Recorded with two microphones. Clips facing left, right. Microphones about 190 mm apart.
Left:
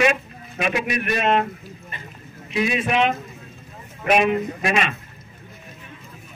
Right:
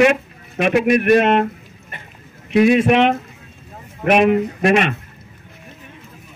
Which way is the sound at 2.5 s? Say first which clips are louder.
Right 8 dB; 55° right (ahead or behind).